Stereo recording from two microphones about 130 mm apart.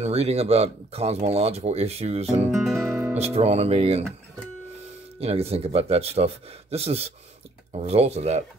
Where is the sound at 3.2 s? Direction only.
55° right (ahead or behind).